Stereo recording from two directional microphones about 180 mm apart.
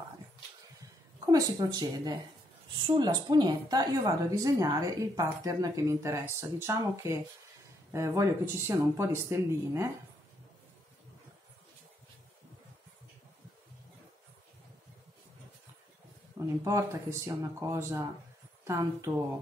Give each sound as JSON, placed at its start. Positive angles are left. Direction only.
{"t": 1.3, "sound": "a woman's voice", "side_deg": -20}
{"t": 16.6, "sound": "a woman's voice", "side_deg": -15}